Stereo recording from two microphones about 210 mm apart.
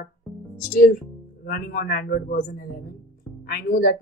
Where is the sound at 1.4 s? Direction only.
45° left (ahead or behind).